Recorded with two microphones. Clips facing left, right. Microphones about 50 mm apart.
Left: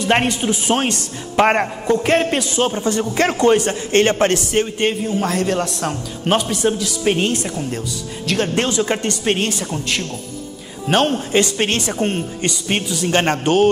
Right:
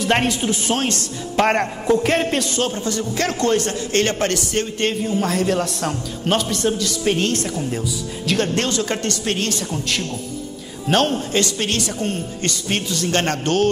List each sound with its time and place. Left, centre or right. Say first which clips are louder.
0.0 s a man's voice: left 2 dB; centre
2.6 s a man's voice: left 4 dB; left
4.7 s a man's voice: left 2 dB; centre; by 9.6 s left
9.6 s a man's voice: left 1 dB; centre
11.3 s a woman's voice: left 3 dB; left
12.4 s a man's voice: left 2 dB; centre